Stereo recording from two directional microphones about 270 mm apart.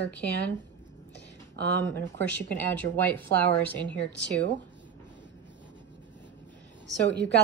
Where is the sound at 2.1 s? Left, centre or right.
Centre.